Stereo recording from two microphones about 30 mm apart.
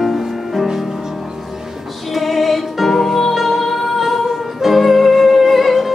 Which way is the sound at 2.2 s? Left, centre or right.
Centre.